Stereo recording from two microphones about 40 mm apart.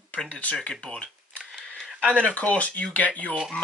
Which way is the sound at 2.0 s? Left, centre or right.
Left.